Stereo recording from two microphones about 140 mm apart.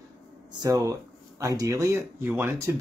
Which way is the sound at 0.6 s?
25° right (ahead or behind).